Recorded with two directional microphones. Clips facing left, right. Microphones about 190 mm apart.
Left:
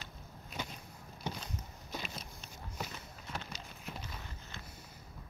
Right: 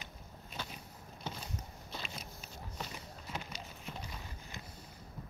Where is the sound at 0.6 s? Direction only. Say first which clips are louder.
Left 3 dB; 15° left (ahead or behind).